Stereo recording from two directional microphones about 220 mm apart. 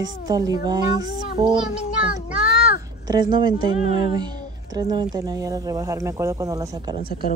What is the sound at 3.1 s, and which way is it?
Speech, 20° right (ahead or behind).